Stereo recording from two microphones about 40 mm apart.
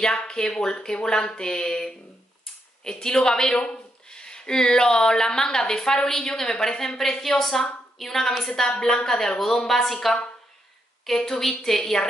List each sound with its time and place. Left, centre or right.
0.0 s a woman's voice: left